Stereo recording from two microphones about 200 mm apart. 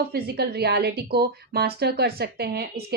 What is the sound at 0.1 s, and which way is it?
A woman's voice, 55° right (ahead or behind).